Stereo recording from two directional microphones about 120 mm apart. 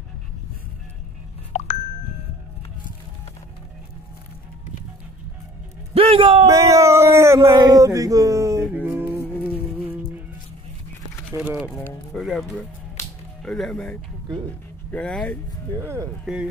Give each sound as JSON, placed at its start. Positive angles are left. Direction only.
{"t": 1.5, "sound": "music", "side_deg": 75}
{"t": 5.9, "sound": "speech", "side_deg": -50}
{"t": 6.4, "sound": "speech", "side_deg": -25}
{"t": 8.8, "sound": "music", "side_deg": -20}
{"t": 11.4, "sound": "speech", "side_deg": -15}
{"t": 12.1, "sound": "speech", "side_deg": 0}
{"t": 15.8, "sound": "speech", "side_deg": -20}